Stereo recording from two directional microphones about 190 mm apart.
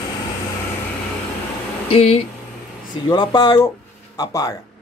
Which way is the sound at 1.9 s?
30° left (ahead or behind).